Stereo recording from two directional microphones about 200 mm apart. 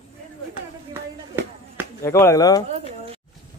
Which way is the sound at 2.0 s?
15° left (ahead or behind).